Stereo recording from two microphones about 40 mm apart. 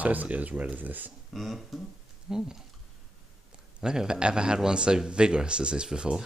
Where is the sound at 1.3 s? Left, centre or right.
Centre.